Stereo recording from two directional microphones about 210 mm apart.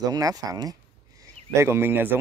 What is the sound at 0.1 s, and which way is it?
Speech, 15° right (ahead or behind).